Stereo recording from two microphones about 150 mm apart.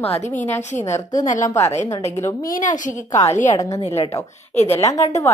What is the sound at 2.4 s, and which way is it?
Speech, 65° left (ahead or behind).